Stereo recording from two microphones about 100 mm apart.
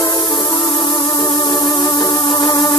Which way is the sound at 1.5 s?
35° left (ahead or behind).